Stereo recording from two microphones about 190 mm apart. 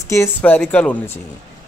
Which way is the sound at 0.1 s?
10° left (ahead or behind).